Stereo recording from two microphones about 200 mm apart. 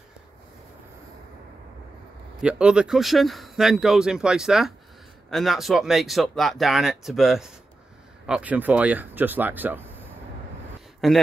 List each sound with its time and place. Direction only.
2.4 s speech: 5° right (ahead or behind)
11.0 s speech: centre (ahead or behind)